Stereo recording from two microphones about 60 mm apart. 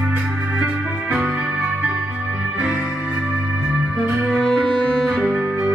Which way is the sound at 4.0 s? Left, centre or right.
Centre.